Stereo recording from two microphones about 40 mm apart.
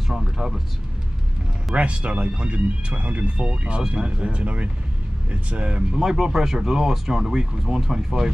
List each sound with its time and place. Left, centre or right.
0.1 s a sound: centre
1.8 s speech: right
5.9 s speech: centre